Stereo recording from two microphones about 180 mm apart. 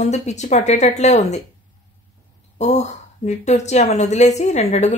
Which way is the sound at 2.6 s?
40° left (ahead or behind).